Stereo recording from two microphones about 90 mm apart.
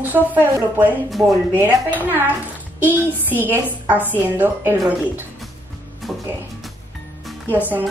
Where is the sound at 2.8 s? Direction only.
20° right (ahead or behind).